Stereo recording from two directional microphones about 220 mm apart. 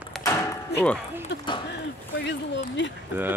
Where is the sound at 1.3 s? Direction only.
50° left (ahead or behind).